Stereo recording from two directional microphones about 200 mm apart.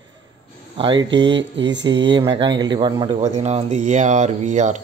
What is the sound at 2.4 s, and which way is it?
Speech, 20° right (ahead or behind).